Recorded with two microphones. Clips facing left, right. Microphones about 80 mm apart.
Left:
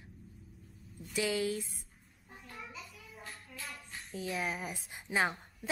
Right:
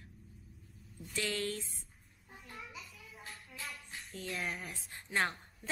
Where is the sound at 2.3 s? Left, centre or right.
Centre.